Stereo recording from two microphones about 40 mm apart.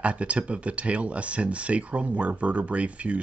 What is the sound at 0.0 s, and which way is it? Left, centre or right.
Speech, right.